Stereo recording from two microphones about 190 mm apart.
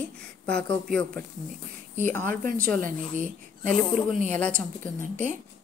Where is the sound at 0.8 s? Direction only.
5° left (ahead or behind).